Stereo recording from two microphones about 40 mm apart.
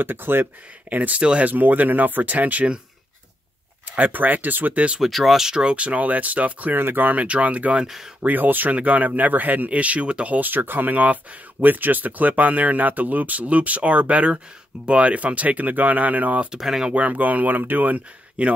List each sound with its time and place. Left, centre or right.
0.0 s speech: right
0.8 s speech: right
3.9 s speech: right
5.0 s speech: centre
5.5 s speech: right
6.7 s speech: right
7.0 s speech: right
7.8 s speech: centre
8.2 s speech: right
8.7 s speech: right
10.4 s speech: right
16.5 s speech: centre
16.9 s speech: right